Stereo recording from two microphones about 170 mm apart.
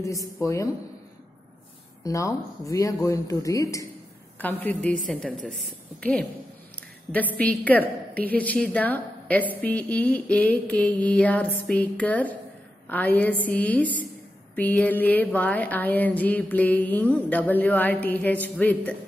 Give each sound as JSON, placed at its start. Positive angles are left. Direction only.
{"t": 0.4, "sound": "a woman's voice", "side_deg": 15}
{"t": 2.0, "sound": "a woman's voice", "side_deg": 20}
{"t": 7.3, "sound": "a woman's voice", "side_deg": 10}